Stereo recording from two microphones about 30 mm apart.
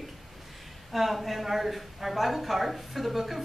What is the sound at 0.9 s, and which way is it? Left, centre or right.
A woman's voice, centre.